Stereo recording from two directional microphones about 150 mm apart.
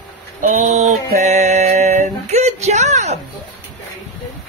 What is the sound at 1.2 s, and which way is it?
Music, 50° right (ahead or behind).